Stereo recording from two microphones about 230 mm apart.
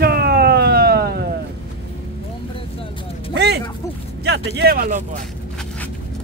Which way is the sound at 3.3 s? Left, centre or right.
Right.